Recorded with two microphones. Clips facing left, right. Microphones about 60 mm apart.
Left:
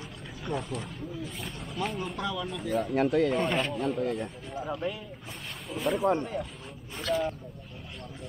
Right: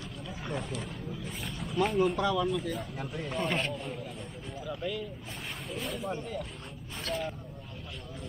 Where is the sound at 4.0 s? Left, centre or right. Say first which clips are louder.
Left 11 dB; left.